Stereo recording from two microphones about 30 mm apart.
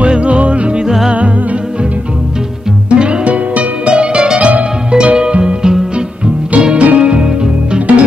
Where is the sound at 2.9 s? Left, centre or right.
Right.